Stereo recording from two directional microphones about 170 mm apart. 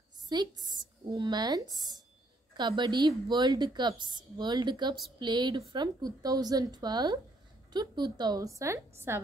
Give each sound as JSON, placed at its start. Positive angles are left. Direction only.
{"t": 0.3, "sound": "a woman's voice", "side_deg": -25}